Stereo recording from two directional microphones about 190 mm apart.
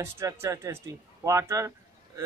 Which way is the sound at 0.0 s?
15° right (ahead or behind).